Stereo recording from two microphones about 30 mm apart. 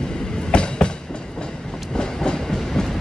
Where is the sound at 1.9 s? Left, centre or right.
Left.